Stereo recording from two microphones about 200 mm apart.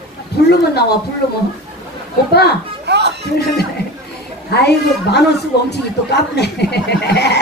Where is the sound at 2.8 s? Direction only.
55° right (ahead or behind).